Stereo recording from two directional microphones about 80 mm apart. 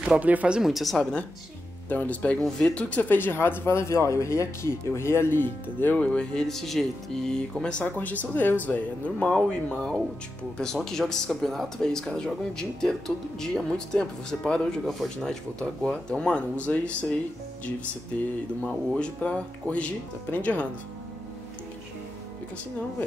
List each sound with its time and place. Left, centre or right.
0.0 s speech: centre
0.6 s speech: centre
1.9 s speech: centre
18.6 s speech: centre